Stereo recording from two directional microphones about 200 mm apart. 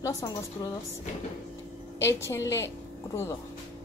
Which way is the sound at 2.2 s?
15° left (ahead or behind).